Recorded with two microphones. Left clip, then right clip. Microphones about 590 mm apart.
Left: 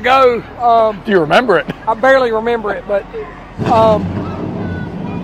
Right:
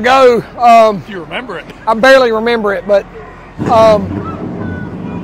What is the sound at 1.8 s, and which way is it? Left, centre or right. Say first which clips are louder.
Speech: right 7 dB; right.